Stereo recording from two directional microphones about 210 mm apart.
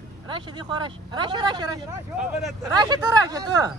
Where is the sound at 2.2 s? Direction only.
Centre (ahead or behind).